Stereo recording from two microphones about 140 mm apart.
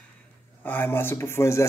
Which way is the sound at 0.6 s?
15° left (ahead or behind).